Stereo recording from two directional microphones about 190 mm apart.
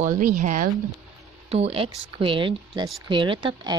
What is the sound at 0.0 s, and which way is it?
Speech, 45° right (ahead or behind).